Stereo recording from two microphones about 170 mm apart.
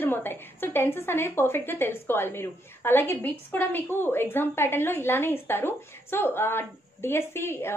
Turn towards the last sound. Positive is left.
turn(degrees=15)  # may be behind; listen again after turning